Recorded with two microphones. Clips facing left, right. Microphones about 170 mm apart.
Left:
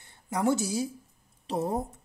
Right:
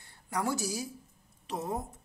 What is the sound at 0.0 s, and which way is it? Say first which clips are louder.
A woman's voice: left 6 dB; 20° left (ahead or behind).